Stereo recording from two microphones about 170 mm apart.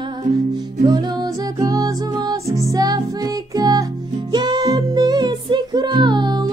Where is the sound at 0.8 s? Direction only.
25° right (ahead or behind).